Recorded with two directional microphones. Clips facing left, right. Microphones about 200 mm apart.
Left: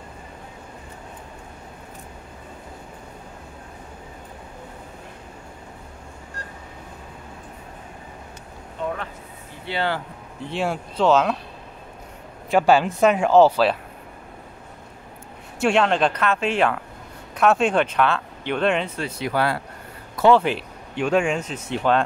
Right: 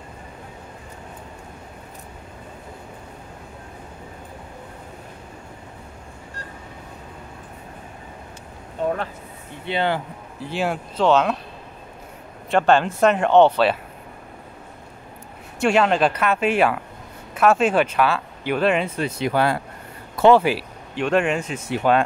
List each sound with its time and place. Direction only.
9.7 s speech: 20° right (ahead or behind)
10.4 s speech: centre (ahead or behind)
12.4 s speech: 5° left (ahead or behind)
15.6 s speech: 5° right (ahead or behind)
18.9 s speech: 20° right (ahead or behind)
20.4 s speech: 5° right (ahead or behind)